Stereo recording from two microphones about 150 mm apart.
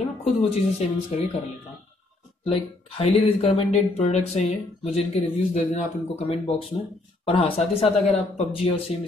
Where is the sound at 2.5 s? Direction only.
40° left (ahead or behind).